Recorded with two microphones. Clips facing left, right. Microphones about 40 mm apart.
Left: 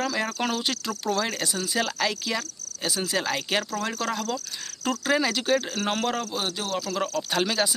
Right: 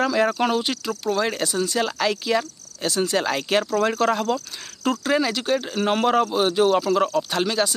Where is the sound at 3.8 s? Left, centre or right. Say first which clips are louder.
Right 8 dB; centre.